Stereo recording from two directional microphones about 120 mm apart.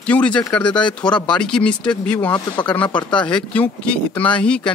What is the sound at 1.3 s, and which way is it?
Speech, 5° left (ahead or behind).